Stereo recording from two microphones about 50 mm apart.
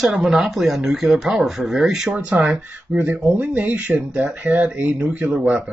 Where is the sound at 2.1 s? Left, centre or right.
Right.